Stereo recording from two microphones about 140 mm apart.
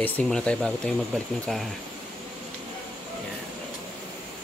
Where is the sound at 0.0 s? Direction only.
10° left (ahead or behind).